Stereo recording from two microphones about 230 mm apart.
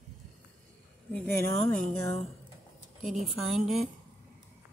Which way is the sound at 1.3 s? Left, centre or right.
Right.